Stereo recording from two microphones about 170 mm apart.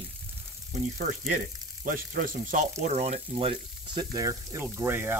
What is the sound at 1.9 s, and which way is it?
Speech, 55° right (ahead or behind).